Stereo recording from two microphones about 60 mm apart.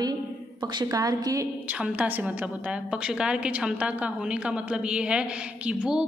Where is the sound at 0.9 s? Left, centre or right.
Right.